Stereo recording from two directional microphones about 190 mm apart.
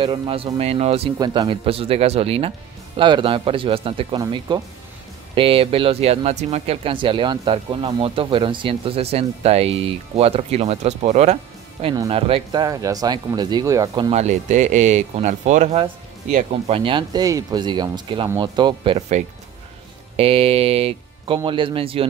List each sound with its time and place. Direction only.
0.0 s speech: 25° right (ahead or behind)
1.1 s speech: 20° right (ahead or behind)
11.8 s speech: 25° right (ahead or behind)
12.6 s speech: 20° right (ahead or behind)
14.1 s speech: 40° right (ahead or behind)